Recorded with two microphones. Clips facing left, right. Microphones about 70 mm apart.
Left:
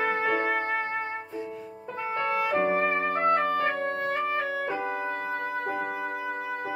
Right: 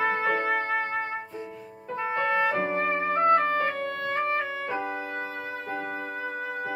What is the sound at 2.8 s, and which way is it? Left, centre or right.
Music, left.